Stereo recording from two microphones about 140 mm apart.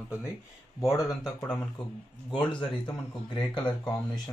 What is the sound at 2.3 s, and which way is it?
Speech, 35° left (ahead or behind).